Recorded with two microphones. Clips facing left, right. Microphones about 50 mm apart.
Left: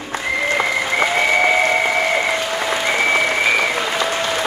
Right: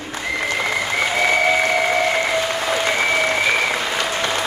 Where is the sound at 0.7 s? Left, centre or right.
Centre.